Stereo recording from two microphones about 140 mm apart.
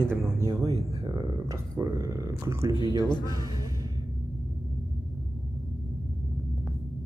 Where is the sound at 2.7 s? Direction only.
35° left (ahead or behind).